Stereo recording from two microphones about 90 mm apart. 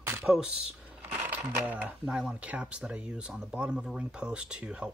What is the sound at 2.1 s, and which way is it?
Speech, 10° right (ahead or behind).